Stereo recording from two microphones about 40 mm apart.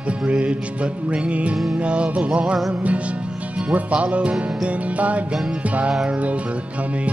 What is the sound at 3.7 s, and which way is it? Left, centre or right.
Music, right.